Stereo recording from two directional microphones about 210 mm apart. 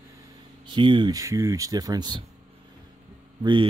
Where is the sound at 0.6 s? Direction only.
25° right (ahead or behind).